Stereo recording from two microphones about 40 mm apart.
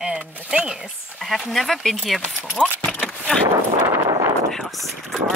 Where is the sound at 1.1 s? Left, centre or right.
Centre.